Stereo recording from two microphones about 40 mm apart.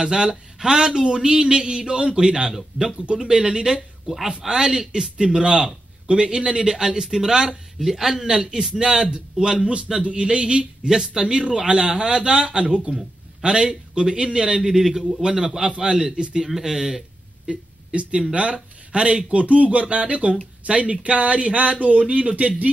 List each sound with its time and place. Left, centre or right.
0.0 s speech: centre
2.8 s speech: right
3.1 s speech: centre
9.9 s speech: centre
10.2 s speech: right
14.7 s speech: centre
17.5 s speech: right